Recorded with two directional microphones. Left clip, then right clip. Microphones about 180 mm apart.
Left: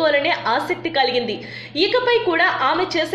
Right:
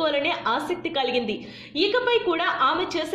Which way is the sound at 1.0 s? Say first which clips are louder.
Left 4 dB; 35° right (ahead or behind).